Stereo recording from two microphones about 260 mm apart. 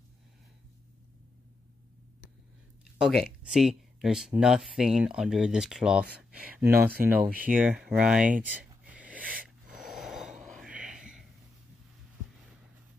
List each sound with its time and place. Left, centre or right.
3.0 s speech: centre
9.2 s wheeze: right
9.7 s gasp: centre